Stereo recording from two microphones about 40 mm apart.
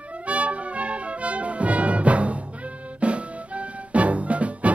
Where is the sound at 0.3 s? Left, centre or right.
Right.